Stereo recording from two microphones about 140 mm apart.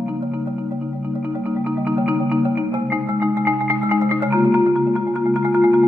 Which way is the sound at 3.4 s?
20° right (ahead or behind).